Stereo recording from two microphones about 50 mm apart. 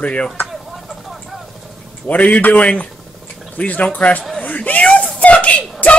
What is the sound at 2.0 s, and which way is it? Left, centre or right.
Speech, left.